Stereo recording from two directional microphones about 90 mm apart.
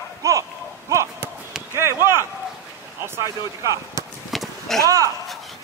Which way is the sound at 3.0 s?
30° right (ahead or behind).